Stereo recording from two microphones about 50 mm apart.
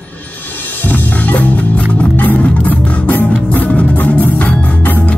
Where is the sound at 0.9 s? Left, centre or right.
Left.